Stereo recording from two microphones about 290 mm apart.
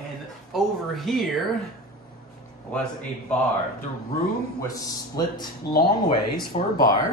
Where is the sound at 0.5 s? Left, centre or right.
Centre.